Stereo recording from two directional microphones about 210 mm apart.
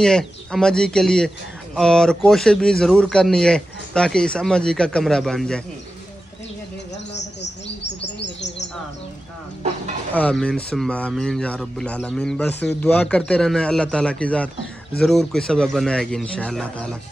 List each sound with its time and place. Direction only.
0.0 s speech: centre (ahead or behind)
8.2 s bird: 55° left (ahead or behind)
10.1 s speech: 5° left (ahead or behind)